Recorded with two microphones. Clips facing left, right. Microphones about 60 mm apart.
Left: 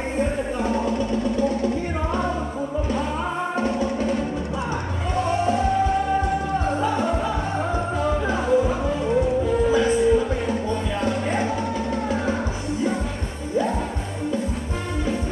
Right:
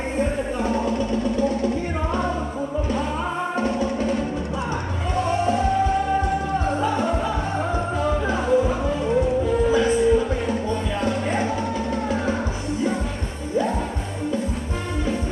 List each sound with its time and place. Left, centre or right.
0.2 s music: centre
5.1 s music: centre